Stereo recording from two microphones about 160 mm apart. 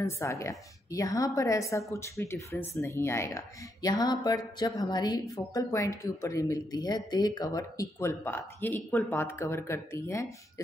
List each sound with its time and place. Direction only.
0.0 s speech: 20° left (ahead or behind)